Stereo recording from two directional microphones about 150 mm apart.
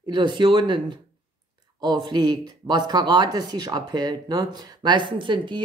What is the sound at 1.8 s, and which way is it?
Speech, 30° right (ahead or behind).